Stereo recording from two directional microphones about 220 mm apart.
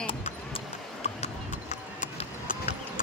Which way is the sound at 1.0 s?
30° left (ahead or behind).